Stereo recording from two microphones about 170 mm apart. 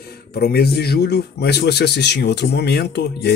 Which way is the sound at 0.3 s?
65° left (ahead or behind).